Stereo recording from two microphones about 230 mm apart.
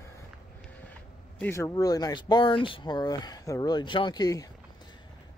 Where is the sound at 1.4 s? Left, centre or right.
Centre.